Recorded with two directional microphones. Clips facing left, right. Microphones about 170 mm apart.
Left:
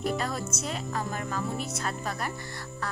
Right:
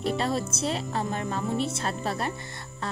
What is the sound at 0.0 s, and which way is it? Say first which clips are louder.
A woman's voice: right 3 dB; 25° right (ahead or behind).